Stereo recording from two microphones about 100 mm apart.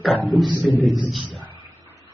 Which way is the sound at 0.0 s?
Centre (ahead or behind).